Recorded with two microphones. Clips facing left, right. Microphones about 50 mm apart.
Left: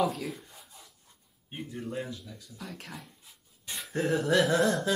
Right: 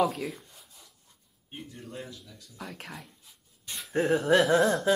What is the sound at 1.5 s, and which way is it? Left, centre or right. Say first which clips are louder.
Speech: left 5 dB; centre.